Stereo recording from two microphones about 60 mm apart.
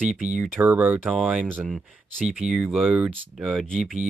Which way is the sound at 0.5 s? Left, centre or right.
Right.